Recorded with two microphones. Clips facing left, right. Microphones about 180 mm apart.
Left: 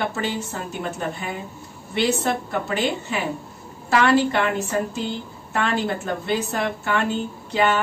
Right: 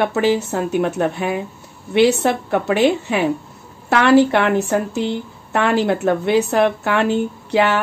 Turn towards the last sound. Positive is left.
turn(degrees=-70)  # may be behind; listen again after turning